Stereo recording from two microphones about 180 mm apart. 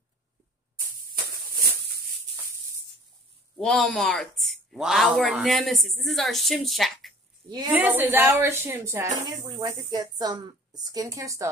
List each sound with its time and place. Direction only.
3.5 s a woman's voice: 5° left (ahead or behind)
7.4 s a woman's voice: 20° right (ahead or behind)
7.7 s a woman's voice: 10° right (ahead or behind)